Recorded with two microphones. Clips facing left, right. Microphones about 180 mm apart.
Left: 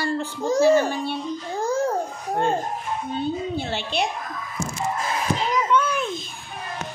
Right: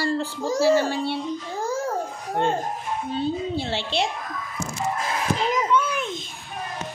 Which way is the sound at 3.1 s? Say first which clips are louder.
Right 1 dB; 30° right (ahead or behind).